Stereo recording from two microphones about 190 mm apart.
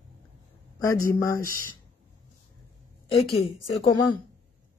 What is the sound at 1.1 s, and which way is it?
Speech, 15° left (ahead or behind).